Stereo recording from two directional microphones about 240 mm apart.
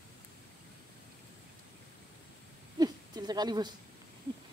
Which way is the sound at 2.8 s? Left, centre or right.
Centre.